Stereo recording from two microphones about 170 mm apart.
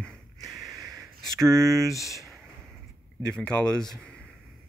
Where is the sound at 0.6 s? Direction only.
20° right (ahead or behind).